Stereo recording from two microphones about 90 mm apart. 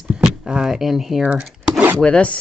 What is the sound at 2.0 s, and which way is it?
Speech, 10° left (ahead or behind).